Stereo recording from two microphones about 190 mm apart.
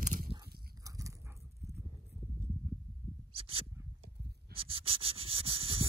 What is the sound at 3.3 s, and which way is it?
Wild animals, 30° right (ahead or behind).